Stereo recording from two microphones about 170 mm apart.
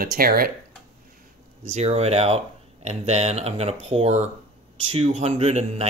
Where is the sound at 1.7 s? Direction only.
40° right (ahead or behind).